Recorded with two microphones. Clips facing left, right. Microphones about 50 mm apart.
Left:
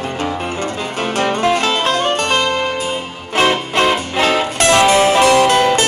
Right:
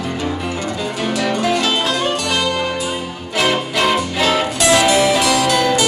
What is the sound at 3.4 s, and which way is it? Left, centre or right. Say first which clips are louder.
Music: left 2 dB; left.